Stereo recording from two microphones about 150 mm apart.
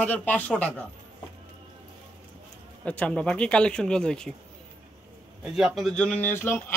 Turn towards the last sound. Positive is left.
turn(degrees=15)  # may be behind; listen again after turning